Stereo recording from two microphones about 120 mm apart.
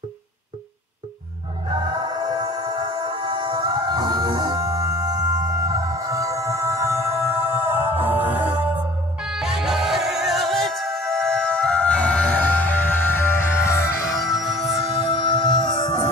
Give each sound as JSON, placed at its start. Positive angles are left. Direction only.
{"t": 1.7, "sound": "music", "side_deg": -35}
{"t": 15.0, "sound": "music", "side_deg": 40}